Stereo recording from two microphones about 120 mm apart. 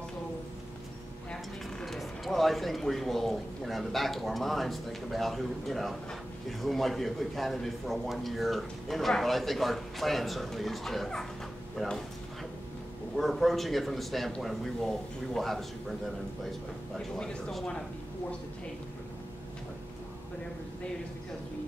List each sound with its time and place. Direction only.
1.3 s a man's voice: 5° left (ahead or behind)
13.1 s a man's voice: centre (ahead or behind)
17.2 s speech: 5° left (ahead or behind)